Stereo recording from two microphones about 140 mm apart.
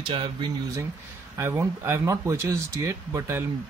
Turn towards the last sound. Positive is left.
turn(degrees=-20)  # may be behind; listen again after turning